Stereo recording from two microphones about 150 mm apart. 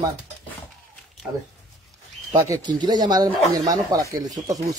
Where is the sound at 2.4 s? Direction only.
25° right (ahead or behind).